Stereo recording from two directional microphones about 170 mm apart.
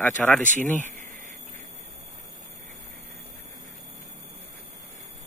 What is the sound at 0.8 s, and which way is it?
Insect, 50° right (ahead or behind).